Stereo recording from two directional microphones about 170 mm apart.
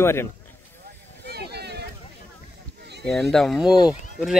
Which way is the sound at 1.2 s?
75° right (ahead or behind).